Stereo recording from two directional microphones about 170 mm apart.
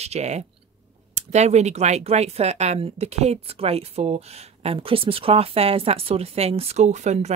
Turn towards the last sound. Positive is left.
turn(degrees=-40)  # may be behind; listen again after turning